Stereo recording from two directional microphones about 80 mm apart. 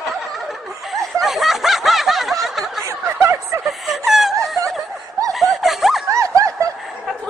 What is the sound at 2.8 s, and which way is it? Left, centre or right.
Snicker, right.